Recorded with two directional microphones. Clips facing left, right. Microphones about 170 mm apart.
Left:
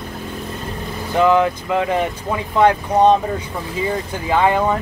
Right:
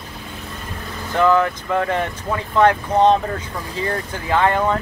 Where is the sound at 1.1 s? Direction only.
15° left (ahead or behind).